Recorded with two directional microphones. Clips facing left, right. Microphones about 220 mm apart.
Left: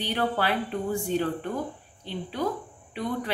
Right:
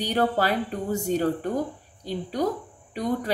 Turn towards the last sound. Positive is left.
turn(degrees=-40)  # may be behind; listen again after turning